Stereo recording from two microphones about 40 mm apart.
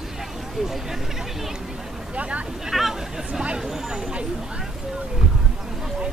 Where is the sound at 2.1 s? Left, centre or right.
Right.